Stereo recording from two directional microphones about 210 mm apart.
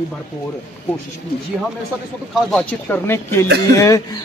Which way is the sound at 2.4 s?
Centre (ahead or behind).